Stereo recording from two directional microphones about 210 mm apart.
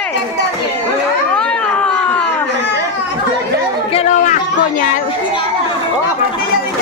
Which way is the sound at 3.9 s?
35° left (ahead or behind).